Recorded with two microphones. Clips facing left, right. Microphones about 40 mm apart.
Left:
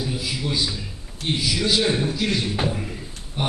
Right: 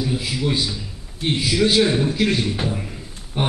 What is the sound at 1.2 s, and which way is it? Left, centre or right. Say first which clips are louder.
A man's voice: right 4 dB; right.